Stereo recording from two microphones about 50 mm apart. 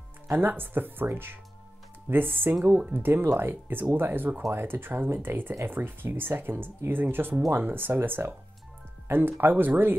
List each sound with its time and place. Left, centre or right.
0.3 s speech: right